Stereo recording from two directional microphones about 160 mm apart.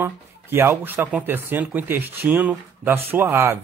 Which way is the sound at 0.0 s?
15° right (ahead or behind).